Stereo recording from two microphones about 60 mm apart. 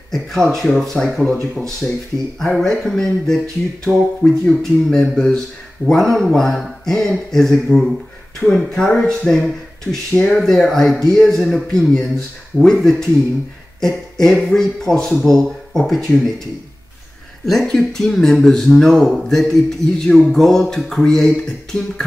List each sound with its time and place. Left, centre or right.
0.1 s speech: centre
1.8 s speech: centre
2.3 s speech: centre
17.5 s speech: centre